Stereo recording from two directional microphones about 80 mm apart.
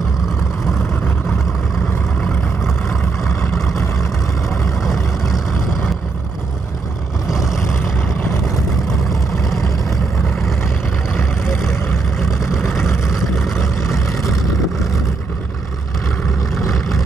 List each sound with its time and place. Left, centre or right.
3.5 s vehicle: centre
7.2 s vehicle: centre
9.1 s vehicle: centre
11.7 s vehicle: centre
13.9 s vehicle: left
16.5 s vehicle: centre